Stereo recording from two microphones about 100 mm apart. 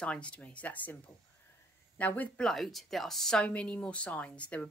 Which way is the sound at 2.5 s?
Centre (ahead or behind).